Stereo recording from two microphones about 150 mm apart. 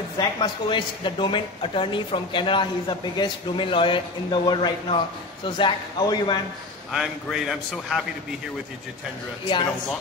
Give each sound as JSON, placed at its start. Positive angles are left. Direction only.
{"t": 0.2, "sound": "a man's voice", "side_deg": 30}
{"t": 6.9, "sound": "a man's voice", "side_deg": 0}